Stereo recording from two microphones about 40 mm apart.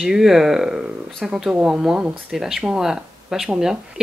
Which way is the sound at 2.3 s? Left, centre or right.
Centre.